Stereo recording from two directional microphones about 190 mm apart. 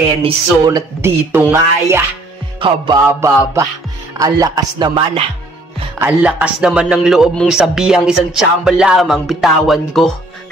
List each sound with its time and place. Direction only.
0.2 s a sound: 20° right (ahead or behind)
2.6 s music: 25° right (ahead or behind)
4.2 s music: 20° right (ahead or behind)
5.9 s speech: 10° right (ahead or behind)